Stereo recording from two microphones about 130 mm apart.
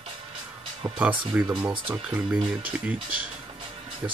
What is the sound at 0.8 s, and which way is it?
Speech, 25° right (ahead or behind).